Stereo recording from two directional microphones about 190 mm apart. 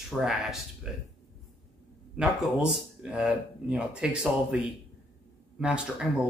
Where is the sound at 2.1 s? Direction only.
5° right (ahead or behind).